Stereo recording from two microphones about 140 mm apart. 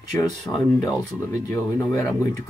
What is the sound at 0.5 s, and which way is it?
Speech, 20° left (ahead or behind).